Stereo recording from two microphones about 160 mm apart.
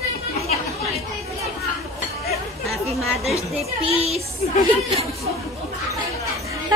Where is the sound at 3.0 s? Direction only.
Centre (ahead or behind).